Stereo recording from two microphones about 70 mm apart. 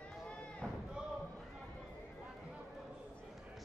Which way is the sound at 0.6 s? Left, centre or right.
Centre.